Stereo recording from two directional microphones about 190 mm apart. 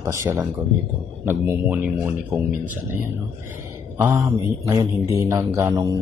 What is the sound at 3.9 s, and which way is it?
Mantra, 10° right (ahead or behind).